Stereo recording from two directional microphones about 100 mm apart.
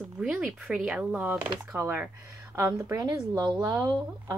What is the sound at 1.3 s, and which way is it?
Speech, 20° right (ahead or behind).